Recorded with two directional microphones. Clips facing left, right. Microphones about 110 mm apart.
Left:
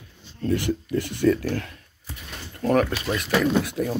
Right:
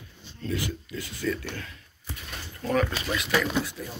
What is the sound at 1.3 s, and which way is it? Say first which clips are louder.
Speech: left 9 dB; 45° left (ahead or behind).